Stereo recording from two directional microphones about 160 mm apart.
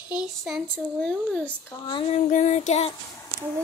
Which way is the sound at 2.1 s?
50° left (ahead or behind).